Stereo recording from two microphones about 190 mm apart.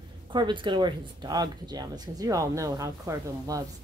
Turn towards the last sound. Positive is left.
turn(degrees=-20)  # may be behind; listen again after turning